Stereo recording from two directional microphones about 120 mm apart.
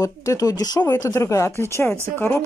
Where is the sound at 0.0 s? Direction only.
30° left (ahead or behind).